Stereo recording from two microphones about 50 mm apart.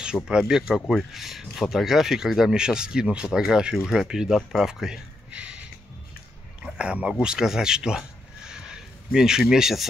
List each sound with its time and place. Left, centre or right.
0.0 s speech: centre
5.3 s music: right
6.6 s speech: right
8.5 s a sound: centre
9.4 s speech: centre